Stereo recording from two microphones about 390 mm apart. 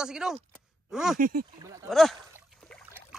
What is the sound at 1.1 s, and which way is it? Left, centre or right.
Speech, right.